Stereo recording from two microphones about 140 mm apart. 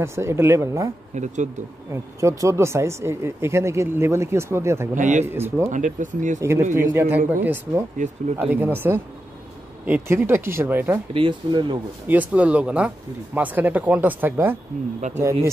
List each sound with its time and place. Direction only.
0.0 s speech: 20° right (ahead or behind)
1.1 s speech: 55° right (ahead or behind)
1.9 s speech: 20° right (ahead or behind)
4.9 s speech: 60° right (ahead or behind)
5.2 s speech: 15° right (ahead or behind)
5.7 s speech: 65° right (ahead or behind)
6.4 s speech: 20° right (ahead or behind)
11.1 s speech: 35° right (ahead or behind)
12.1 s speech: 10° right (ahead or behind)